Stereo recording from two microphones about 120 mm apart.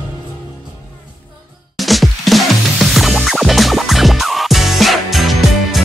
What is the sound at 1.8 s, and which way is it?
Music, centre (ahead or behind).